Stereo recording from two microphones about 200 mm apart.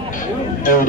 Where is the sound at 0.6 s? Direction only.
40° left (ahead or behind).